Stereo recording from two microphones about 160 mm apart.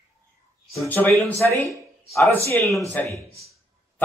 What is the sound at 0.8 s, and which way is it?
Speech, 10° left (ahead or behind).